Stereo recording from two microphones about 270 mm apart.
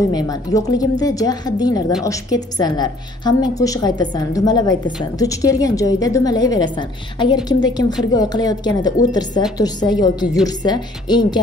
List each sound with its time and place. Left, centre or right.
0.1 s a woman's voice: centre